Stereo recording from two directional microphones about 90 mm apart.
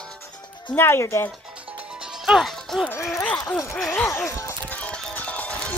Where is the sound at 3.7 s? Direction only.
10° left (ahead or behind).